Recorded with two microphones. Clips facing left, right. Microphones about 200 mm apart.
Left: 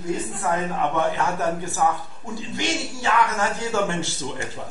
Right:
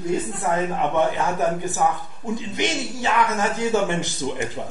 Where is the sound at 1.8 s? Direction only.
20° right (ahead or behind).